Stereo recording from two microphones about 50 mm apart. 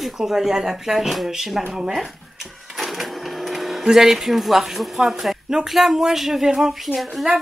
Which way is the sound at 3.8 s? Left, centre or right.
Centre.